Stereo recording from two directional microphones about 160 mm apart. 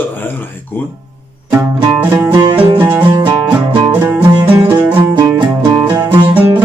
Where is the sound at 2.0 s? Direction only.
15° right (ahead or behind).